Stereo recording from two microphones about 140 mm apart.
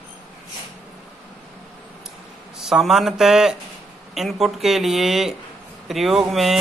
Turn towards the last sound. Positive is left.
turn(degrees=0)  # may be behind; listen again after turning